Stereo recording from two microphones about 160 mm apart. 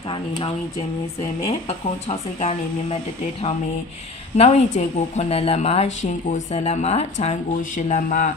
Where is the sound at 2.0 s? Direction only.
40° left (ahead or behind).